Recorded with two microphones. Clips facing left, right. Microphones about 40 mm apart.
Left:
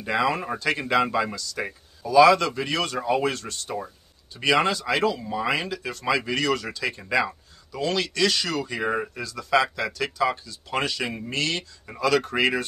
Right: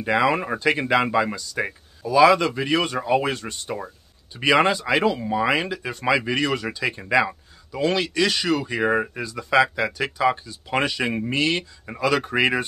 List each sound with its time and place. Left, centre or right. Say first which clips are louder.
0.0 s speech: right 4 dB; centre